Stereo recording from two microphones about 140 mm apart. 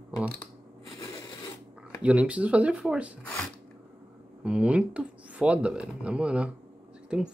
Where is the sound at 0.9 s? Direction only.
20° left (ahead or behind).